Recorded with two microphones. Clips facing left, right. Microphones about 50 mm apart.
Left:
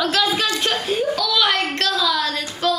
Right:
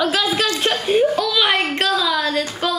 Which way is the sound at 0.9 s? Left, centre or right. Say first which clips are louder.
Right 7 dB; right.